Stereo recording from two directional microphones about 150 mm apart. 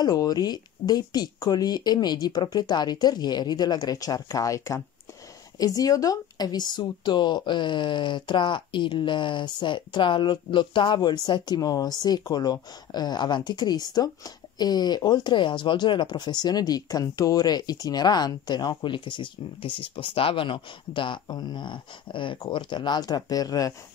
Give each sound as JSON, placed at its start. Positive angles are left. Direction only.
{"t": 0.0, "sound": "speech", "side_deg": 25}